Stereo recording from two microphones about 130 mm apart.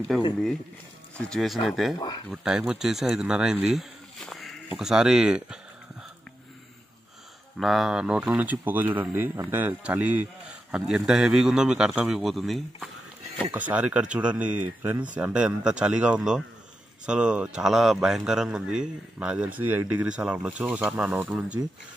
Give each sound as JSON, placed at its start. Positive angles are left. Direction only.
{"t": 1.1, "sound": "a man's voice", "side_deg": 5}
{"t": 2.0, "sound": "speech", "side_deg": 35}
{"t": 2.3, "sound": "speech", "side_deg": -5}
{"t": 7.5, "sound": "a man's voice", "side_deg": 0}
{"t": 13.5, "sound": "a man's voice", "side_deg": -10}